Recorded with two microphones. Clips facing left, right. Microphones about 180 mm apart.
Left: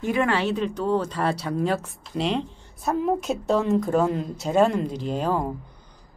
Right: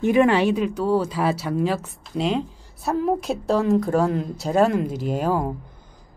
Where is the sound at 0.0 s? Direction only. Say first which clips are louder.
Right 6 dB; 20° right (ahead or behind).